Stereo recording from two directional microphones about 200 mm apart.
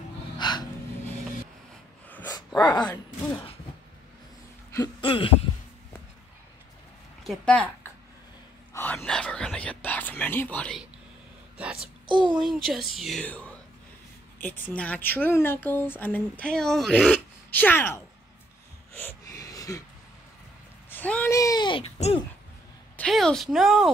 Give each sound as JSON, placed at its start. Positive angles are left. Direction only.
{"t": 0.4, "sound": "gasp", "side_deg": 20}
{"t": 2.0, "sound": "dog", "side_deg": 10}
{"t": 2.3, "sound": "dog", "side_deg": 20}
{"t": 4.7, "sound": "speech", "side_deg": 25}
{"t": 7.2, "sound": "speech", "side_deg": 5}
{"t": 8.7, "sound": "whispering", "side_deg": 5}
{"t": 11.5, "sound": "speech", "side_deg": -5}
{"t": 12.1, "sound": "a child's voice", "side_deg": -25}
{"t": 12.4, "sound": "a woman's voice", "side_deg": 0}
{"t": 19.2, "sound": "gasp", "side_deg": 15}
{"t": 20.9, "sound": "speech", "side_deg": 10}
{"t": 22.9, "sound": "a woman's voice", "side_deg": 5}